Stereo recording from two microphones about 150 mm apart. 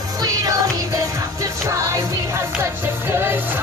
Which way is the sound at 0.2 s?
25° right (ahead or behind).